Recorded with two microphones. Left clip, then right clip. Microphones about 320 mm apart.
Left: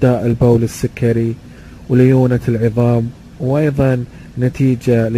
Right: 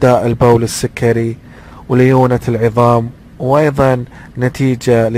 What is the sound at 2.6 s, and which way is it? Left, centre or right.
Speech, right.